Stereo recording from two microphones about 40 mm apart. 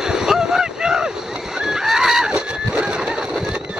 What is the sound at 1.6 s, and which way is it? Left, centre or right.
Goose, centre.